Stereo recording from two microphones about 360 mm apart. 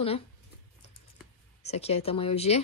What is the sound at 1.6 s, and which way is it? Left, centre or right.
Speech, centre.